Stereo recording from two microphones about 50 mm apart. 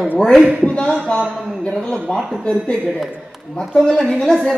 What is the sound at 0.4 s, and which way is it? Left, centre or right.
Speech, right.